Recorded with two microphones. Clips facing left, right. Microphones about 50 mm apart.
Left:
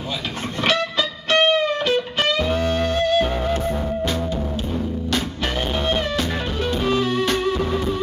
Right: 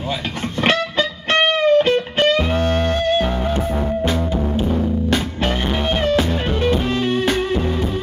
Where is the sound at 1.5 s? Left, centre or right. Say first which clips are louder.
Right 5 dB; right.